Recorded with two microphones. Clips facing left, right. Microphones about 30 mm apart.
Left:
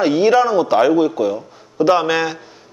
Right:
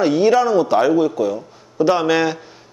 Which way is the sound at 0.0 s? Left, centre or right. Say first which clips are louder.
Left 1 dB; centre.